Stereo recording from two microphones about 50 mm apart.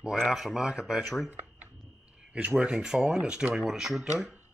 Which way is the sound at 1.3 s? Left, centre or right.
Right.